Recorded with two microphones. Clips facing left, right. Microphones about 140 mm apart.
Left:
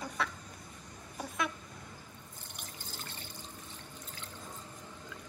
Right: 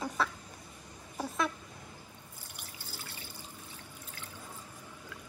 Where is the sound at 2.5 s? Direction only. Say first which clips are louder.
Left 1 dB; 10° right (ahead or behind).